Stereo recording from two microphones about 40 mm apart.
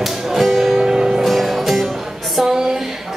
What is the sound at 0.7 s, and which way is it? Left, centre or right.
Music, centre.